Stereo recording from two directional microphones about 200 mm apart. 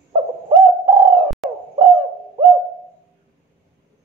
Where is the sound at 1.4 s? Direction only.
Centre (ahead or behind).